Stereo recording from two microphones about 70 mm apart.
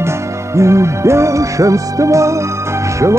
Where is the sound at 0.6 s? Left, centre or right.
Right.